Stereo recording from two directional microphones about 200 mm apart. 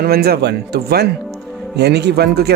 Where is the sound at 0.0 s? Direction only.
50° right (ahead or behind).